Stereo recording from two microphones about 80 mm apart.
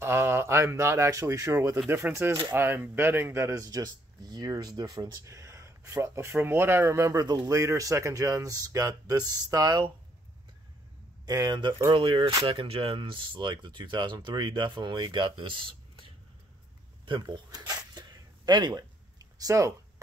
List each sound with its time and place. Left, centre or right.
0.0 s a man's voice: right
1.9 s speech: right
11.2 s speech: right
11.9 s speech: right
17.6 s zipper: right